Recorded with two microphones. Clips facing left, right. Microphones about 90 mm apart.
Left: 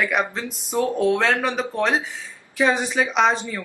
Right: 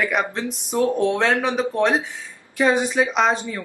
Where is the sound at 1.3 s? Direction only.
15° right (ahead or behind).